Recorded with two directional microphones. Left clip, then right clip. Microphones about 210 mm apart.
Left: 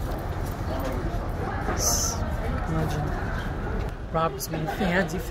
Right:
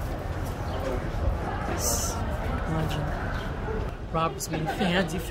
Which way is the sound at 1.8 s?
25° right (ahead or behind).